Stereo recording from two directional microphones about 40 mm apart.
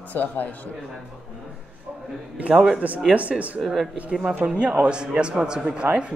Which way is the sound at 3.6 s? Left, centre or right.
Centre.